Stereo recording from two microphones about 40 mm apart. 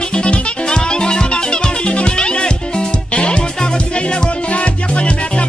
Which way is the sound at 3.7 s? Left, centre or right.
Left.